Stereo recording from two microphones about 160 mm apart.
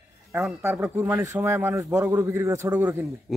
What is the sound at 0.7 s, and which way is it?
A man's voice, 10° right (ahead or behind).